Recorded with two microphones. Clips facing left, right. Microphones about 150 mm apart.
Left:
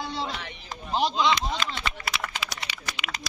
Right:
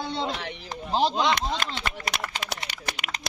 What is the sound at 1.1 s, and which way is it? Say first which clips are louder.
Speech: even; 50° right (ahead or behind).